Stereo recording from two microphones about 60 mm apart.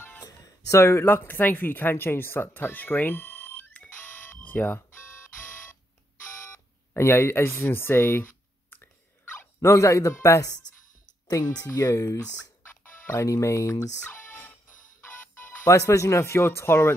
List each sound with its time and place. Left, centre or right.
0.2 s a sound: left
1.0 s speech: left
3.9 s a sound: left
6.9 s speech: left
9.6 s speech: left
11.7 s speech: left
14.0 s music: left
15.6 s speech: left